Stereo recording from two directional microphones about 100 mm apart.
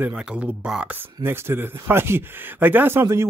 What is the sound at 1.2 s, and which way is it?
Speech, 25° right (ahead or behind).